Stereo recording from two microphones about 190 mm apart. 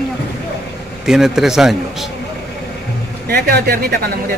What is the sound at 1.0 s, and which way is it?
A woman's voice, centre (ahead or behind).